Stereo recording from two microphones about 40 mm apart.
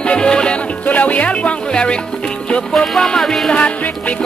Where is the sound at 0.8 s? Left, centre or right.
Left.